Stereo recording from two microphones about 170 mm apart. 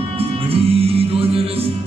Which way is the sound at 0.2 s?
35° right (ahead or behind).